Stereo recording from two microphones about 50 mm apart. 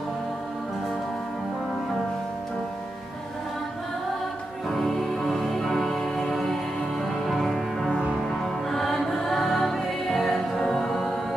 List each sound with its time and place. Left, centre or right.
4.6 s music: centre